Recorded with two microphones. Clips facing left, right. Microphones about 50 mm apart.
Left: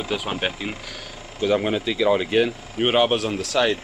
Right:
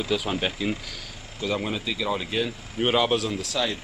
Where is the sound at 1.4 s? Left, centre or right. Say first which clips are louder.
Left 7 dB; left.